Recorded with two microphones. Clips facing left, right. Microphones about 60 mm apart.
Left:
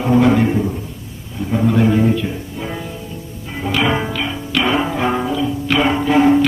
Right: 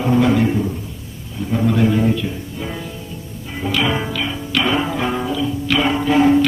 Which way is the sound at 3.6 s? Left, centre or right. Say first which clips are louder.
Left 2 dB; centre.